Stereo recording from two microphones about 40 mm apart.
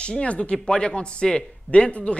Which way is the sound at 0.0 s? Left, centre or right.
Left.